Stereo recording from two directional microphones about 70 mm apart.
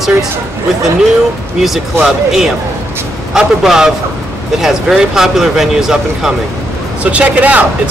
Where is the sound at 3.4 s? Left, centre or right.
Centre.